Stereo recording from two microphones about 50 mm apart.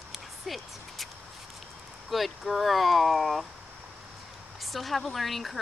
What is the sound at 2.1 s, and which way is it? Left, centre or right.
A woman's voice, centre.